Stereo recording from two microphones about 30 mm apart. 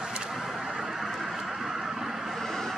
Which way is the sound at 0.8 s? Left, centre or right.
Centre.